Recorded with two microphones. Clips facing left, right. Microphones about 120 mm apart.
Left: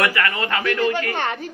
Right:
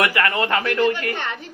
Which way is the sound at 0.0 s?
25° right (ahead or behind).